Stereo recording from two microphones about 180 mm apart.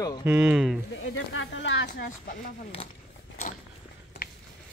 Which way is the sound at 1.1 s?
90° left.